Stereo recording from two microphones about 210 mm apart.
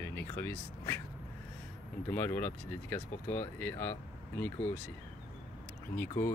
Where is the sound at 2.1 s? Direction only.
10° left (ahead or behind).